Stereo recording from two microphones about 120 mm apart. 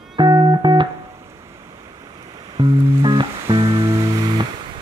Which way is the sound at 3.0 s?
45° right (ahead or behind).